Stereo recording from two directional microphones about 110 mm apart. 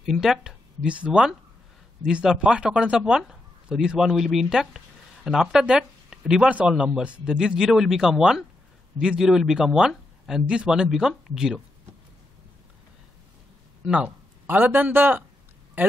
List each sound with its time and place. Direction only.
0.0 s speech: 5° right (ahead or behind)
13.8 s a man's voice: 10° right (ahead or behind)